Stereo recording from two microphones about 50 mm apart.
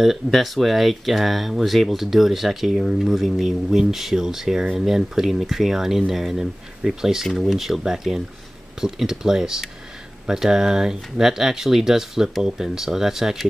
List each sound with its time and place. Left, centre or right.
0.3 s speech: centre